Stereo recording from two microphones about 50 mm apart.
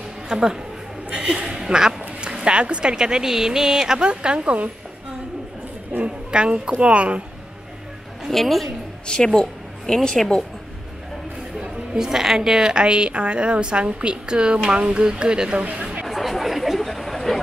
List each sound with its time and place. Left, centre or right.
0.3 s a woman's voice: centre
1.1 s a sound: centre
2.3 s a woman's voice: right
6.0 s speech: right
8.3 s a woman's voice: centre
9.0 s speech: centre
11.6 s a woman's voice: centre
15.6 s chatter: right
16.1 s chatter: centre